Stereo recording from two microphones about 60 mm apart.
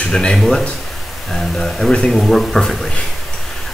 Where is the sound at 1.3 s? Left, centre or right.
Centre.